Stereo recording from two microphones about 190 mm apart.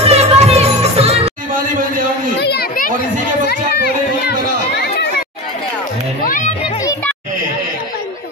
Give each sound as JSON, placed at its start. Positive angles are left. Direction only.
{"t": 0.0, "sound": "music", "side_deg": -30}
{"t": 2.4, "sound": "children playing", "side_deg": 55}
{"t": 3.4, "sound": "run", "side_deg": 55}
{"t": 6.2, "sound": "a sound", "side_deg": 45}